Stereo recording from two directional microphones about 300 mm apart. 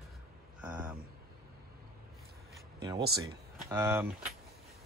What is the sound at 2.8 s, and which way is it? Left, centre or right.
Speech, centre.